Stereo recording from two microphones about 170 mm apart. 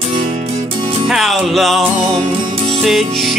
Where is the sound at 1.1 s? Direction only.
Centre (ahead or behind).